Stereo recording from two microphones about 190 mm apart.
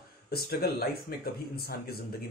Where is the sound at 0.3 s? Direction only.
55° left (ahead or behind).